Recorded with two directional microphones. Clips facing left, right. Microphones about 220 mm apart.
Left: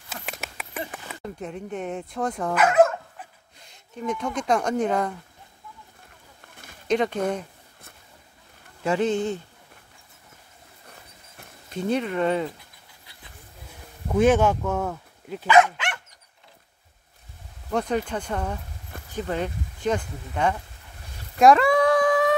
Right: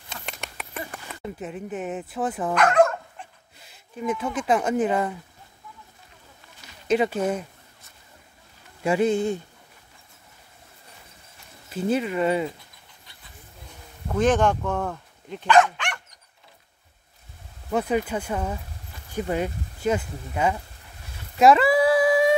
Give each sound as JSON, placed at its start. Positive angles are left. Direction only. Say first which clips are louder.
{"t": 0.1, "sound": "a sound", "louder": "left 1 dB", "side_deg": 5}
{"t": 2.6, "sound": "dog", "louder": "left 1 dB", "side_deg": 5}
{"t": 3.5, "sound": "speech", "louder": "right 1 dB", "side_deg": -5}
{"t": 6.5, "sound": "a sound", "louder": "left 4 dB", "side_deg": 50}
{"t": 6.9, "sound": "speech", "louder": "right 1 dB", "side_deg": -5}
{"t": 8.8, "sound": "speech", "louder": "right 2 dB", "side_deg": -10}
{"t": 11.7, "sound": "speech", "louder": "right 1 dB", "side_deg": -5}
{"t": 14.1, "sound": "speech", "louder": "left 2 dB", "side_deg": 10}
{"t": 17.6, "sound": "speech", "louder": "right 1 dB", "side_deg": -5}
{"t": 21.4, "sound": "a sound", "louder": "even", "side_deg": -5}